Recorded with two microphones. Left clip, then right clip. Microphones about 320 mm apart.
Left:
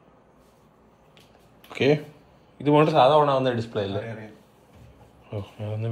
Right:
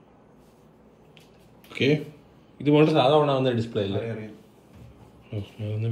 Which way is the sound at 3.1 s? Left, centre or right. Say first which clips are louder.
Left 2 dB; left.